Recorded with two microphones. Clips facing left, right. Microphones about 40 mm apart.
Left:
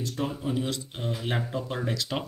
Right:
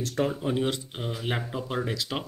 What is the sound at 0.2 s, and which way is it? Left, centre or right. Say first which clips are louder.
Speech: right 5 dB; right.